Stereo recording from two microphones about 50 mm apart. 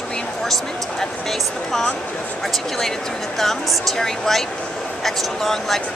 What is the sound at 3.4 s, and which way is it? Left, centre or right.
Speech, centre.